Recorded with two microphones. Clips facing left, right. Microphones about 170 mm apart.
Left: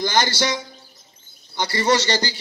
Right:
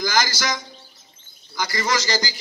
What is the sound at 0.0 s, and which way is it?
A man's voice, 30° left (ahead or behind).